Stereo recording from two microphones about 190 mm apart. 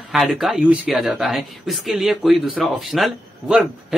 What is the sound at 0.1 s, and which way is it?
A man's voice, centre (ahead or behind).